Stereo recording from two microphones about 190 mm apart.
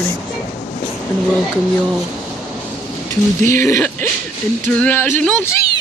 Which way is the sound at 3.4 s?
15° left (ahead or behind).